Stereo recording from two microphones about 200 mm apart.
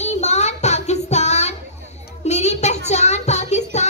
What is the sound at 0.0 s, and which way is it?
Child singing, 35° left (ahead or behind).